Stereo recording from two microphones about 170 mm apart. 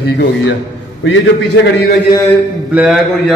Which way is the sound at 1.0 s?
90° left.